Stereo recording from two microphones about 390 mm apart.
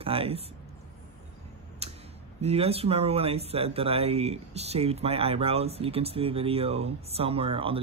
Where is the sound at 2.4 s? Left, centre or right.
Centre.